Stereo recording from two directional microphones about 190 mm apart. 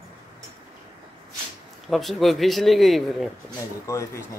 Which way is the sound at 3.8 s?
15° left (ahead or behind).